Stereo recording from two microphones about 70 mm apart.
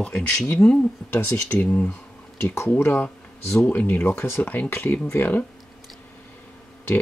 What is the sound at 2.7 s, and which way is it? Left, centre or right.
Speech, left.